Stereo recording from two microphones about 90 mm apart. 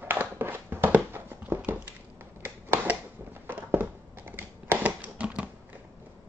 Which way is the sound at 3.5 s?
20° right (ahead or behind).